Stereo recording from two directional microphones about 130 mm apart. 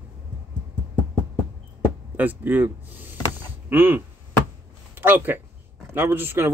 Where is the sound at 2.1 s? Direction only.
15° right (ahead or behind).